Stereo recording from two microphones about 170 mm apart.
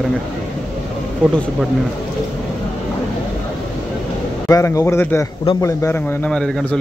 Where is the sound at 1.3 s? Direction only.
5° left (ahead or behind).